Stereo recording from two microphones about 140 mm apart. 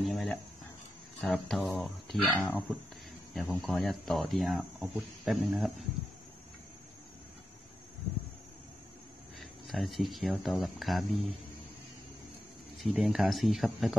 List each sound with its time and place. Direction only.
0.0 s a sound: centre (ahead or behind)
1.8 s speech: centre (ahead or behind)
3.3 s speech: 5° left (ahead or behind)
9.4 s speech: centre (ahead or behind)
12.7 s speech: centre (ahead or behind)